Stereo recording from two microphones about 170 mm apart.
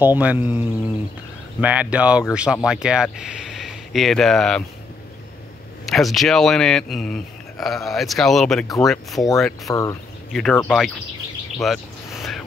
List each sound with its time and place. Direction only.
0.0 s speech: 10° right (ahead or behind)
5.9 s speech: centre (ahead or behind)
9.7 s speech: 20° left (ahead or behind)
10.3 s speech: 5° left (ahead or behind)
11.6 s a sound: centre (ahead or behind)